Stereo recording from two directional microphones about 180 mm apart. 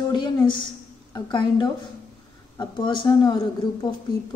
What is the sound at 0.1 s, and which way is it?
A woman's voice, 25° left (ahead or behind).